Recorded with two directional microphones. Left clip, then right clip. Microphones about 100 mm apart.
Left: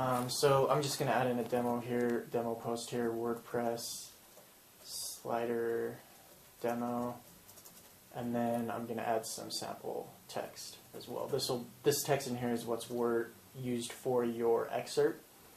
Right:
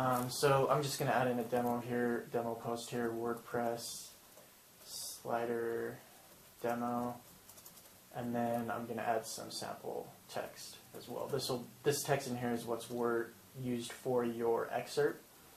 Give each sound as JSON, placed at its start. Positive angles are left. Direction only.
{"t": 0.4, "sound": "speech", "side_deg": 35}
{"t": 5.2, "sound": "speech", "side_deg": 30}